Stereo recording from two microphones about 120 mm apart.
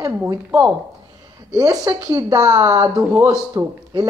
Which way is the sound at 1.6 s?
30° right (ahead or behind).